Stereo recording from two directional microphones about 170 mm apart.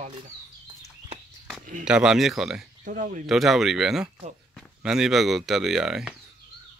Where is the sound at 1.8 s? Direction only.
5° right (ahead or behind).